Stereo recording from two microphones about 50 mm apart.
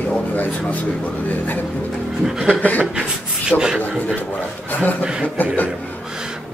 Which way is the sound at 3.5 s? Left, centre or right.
Left.